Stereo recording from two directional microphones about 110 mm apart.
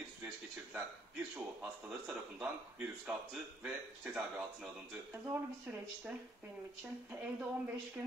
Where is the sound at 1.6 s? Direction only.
5° right (ahead or behind).